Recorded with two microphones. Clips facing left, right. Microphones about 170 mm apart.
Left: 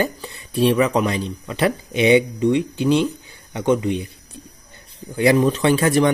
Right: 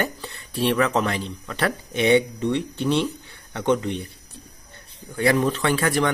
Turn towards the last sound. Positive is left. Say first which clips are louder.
# left 5 dB
turn(degrees=20)  # may be behind; listen again after turning